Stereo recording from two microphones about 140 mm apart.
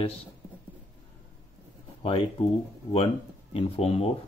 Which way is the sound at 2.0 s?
40° left (ahead or behind).